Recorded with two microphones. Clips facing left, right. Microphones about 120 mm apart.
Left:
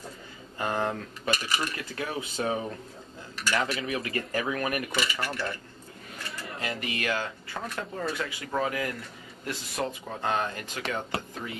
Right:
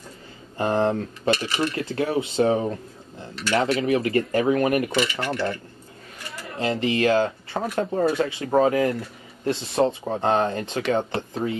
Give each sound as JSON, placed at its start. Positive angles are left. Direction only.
{"t": 0.6, "sound": "speech", "side_deg": -30}
{"t": 6.6, "sound": "speech", "side_deg": -30}